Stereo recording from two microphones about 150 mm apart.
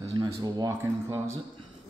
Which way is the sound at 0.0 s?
25° right (ahead or behind).